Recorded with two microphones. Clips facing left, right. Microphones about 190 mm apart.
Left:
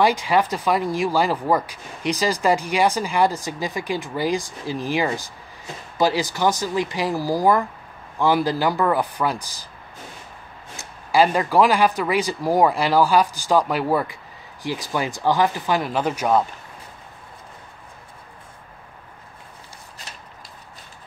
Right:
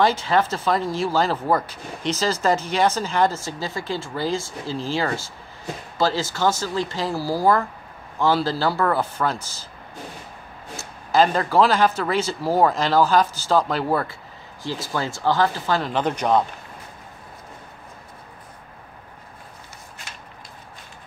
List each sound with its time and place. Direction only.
0.0 s speech: 15° left (ahead or behind)
10.8 s speech: 10° left (ahead or behind)